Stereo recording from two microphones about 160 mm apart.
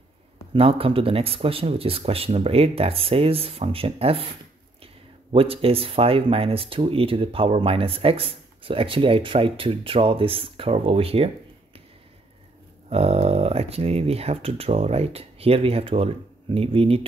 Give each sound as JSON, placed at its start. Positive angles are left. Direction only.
{"t": 0.5, "sound": "speech", "side_deg": -35}
{"t": 12.9, "sound": "speech", "side_deg": -40}